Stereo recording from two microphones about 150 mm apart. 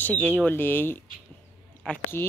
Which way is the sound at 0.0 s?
10° left (ahead or behind).